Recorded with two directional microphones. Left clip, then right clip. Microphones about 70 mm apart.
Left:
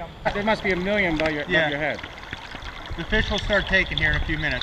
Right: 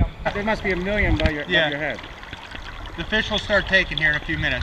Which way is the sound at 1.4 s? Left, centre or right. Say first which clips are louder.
Right 3 dB; right.